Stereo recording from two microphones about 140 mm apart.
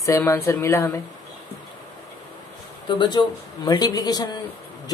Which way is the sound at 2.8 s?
35° left (ahead or behind).